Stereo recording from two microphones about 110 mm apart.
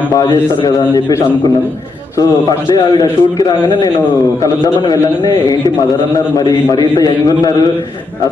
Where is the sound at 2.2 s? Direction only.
40° left (ahead or behind).